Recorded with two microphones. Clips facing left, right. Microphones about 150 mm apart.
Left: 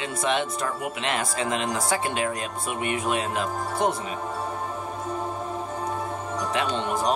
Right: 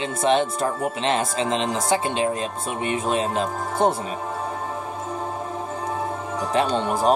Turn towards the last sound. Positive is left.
turn(degrees=-35)  # may be behind; listen again after turning